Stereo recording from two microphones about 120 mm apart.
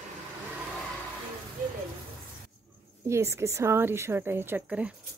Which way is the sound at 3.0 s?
25° right (ahead or behind).